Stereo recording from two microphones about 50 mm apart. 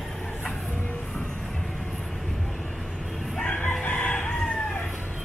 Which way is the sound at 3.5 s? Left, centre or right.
Left.